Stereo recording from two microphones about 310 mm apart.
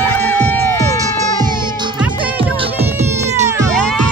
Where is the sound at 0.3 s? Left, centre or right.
Centre.